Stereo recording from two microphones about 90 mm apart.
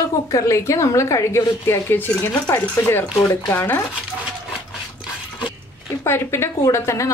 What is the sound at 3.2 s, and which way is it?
Speech, 35° left (ahead or behind).